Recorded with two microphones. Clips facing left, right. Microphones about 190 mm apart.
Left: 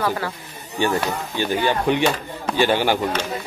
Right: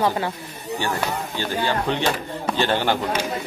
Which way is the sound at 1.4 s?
15° left (ahead or behind).